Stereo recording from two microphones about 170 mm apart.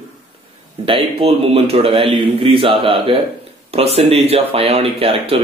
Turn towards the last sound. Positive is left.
turn(degrees=-35)  # may be behind; listen again after turning